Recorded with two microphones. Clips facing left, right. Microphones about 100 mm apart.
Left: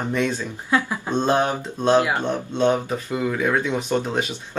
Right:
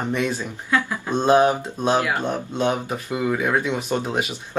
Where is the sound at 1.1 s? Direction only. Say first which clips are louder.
Right 4 dB; 10° right (ahead or behind).